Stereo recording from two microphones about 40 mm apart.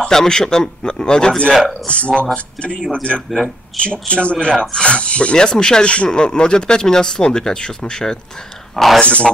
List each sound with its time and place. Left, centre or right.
0.1 s a man's voice: centre
3.3 s speech: centre
3.7 s speech: left
8.7 s speech: centre
9.0 s speech: left